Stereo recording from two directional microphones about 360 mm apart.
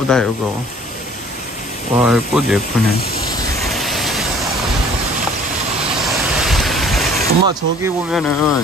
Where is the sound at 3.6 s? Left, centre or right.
Centre.